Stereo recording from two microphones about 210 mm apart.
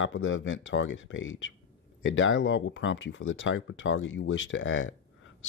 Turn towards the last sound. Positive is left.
turn(degrees=65)  # may be behind; listen again after turning